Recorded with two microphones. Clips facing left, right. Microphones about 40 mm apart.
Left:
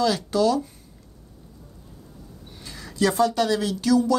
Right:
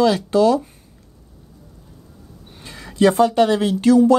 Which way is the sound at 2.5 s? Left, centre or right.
Right.